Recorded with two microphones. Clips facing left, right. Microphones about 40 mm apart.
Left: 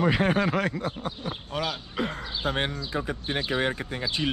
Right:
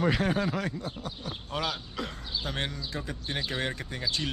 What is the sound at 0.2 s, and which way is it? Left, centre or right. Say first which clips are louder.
Speech: left 5 dB; left.